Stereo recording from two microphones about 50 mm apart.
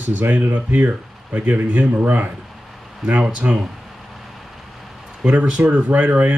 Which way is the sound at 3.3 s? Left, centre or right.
Right.